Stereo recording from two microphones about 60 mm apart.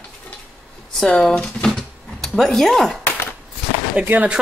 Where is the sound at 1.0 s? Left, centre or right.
Centre.